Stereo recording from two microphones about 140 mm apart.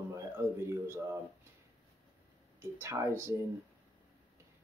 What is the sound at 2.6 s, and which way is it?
Speech, 20° right (ahead or behind).